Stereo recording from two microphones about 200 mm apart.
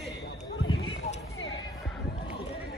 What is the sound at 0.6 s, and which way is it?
Clip-clop, 75° left (ahead or behind).